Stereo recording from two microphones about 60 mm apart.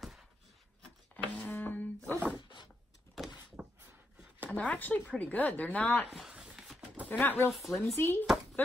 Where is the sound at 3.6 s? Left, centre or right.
Right.